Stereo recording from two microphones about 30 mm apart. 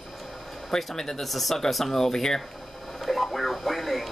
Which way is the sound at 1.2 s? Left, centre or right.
Centre.